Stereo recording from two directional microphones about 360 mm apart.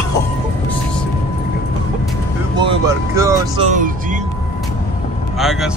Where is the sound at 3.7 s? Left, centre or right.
Right.